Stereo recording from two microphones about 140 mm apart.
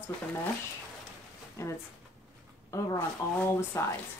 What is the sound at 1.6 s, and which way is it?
Speech, 20° left (ahead or behind).